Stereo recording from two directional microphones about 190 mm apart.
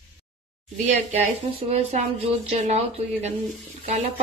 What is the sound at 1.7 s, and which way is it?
Speech, 35° right (ahead or behind).